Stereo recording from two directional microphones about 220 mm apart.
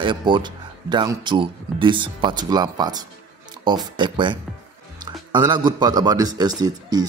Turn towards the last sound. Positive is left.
turn(degrees=-20)  # may be behind; listen again after turning